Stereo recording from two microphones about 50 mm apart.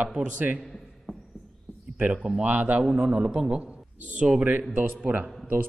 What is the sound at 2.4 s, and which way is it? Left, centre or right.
Speech, right.